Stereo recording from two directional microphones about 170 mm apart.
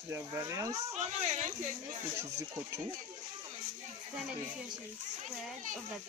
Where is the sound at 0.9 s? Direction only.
40° right (ahead or behind).